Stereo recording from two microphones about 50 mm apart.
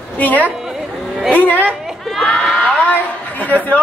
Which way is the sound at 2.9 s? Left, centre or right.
Left.